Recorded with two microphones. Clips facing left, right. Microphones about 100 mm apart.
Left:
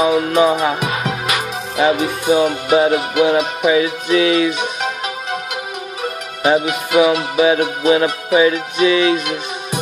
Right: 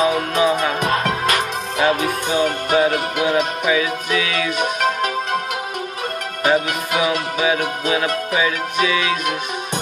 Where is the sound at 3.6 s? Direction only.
30° left (ahead or behind).